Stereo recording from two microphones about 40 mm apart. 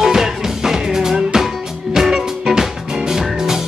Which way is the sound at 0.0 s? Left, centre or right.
Centre.